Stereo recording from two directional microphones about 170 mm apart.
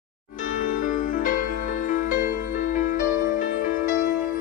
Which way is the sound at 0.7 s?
50° left (ahead or behind).